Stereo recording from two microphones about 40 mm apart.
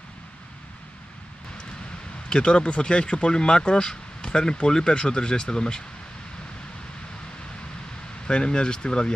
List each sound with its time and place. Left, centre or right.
2.2 s speech: left
8.3 s speech: left